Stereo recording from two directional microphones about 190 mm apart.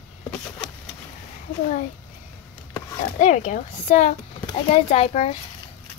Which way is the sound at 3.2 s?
40° left (ahead or behind).